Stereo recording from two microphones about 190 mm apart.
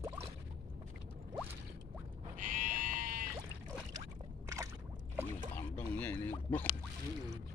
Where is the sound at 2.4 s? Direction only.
45° right (ahead or behind).